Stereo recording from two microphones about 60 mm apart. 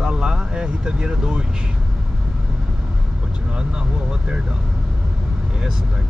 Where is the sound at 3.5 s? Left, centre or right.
Centre.